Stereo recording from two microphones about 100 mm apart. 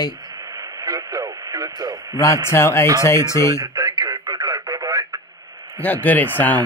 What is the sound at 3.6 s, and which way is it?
Radio, 40° right (ahead or behind).